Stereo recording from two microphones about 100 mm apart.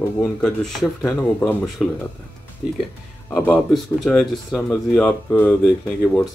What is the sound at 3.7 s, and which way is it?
Speech, centre (ahead or behind).